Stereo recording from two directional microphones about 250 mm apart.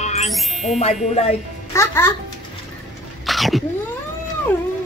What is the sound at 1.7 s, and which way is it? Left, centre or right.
Speech, centre.